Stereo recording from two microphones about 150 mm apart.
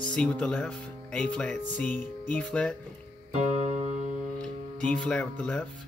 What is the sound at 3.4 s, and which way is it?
Music, 50° right (ahead or behind).